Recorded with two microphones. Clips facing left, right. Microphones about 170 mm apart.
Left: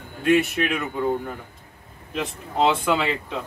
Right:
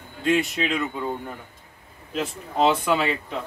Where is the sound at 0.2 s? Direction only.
70° left (ahead or behind).